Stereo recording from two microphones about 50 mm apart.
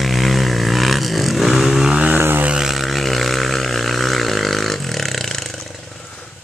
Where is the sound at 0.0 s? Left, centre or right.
Centre.